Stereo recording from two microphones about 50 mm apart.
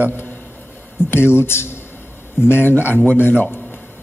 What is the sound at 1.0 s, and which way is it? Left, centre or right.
Speech, left.